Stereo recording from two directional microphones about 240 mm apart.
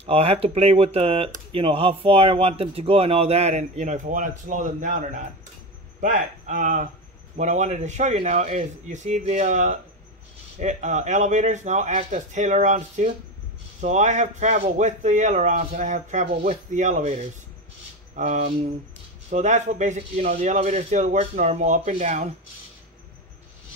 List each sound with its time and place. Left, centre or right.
0.0 s speech: right